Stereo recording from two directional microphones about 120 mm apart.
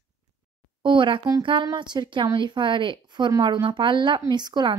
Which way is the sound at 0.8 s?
45° right (ahead or behind).